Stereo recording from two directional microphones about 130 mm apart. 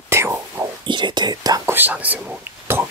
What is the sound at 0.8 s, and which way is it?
Speech, 35° right (ahead or behind).